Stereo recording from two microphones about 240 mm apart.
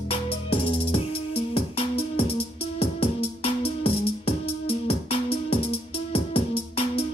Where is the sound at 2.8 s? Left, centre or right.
Left.